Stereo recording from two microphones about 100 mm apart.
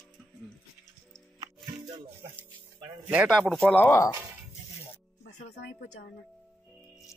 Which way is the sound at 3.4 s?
15° left (ahead or behind).